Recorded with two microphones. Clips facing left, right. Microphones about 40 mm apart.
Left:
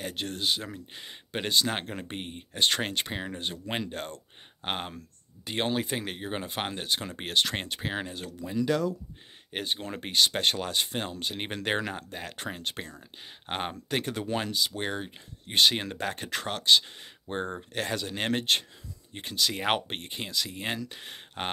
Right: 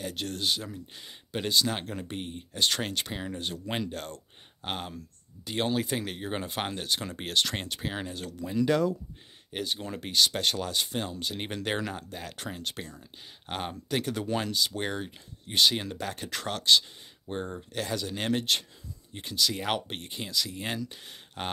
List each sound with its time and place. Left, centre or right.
0.1 s speech: left
0.9 s speech: left; by 8.6 s centre
8.6 s speech: centre
9.5 s speech: left
14.1 s speech: left
15.4 s speech: left; by 16.8 s centre
17.0 s speech: left